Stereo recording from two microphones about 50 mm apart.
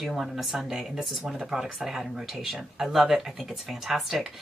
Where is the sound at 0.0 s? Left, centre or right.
Centre.